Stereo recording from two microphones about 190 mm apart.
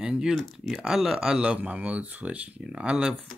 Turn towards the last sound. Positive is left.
turn(degrees=-5)  # may be behind; listen again after turning